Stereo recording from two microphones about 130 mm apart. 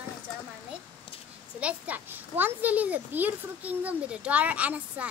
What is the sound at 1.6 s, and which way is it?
A child's voice, 10° right (ahead or behind).